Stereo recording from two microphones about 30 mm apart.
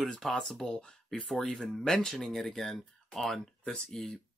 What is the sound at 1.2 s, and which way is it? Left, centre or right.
Speech, centre.